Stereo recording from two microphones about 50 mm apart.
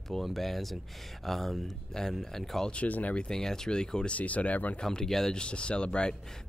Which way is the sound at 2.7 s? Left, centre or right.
Left.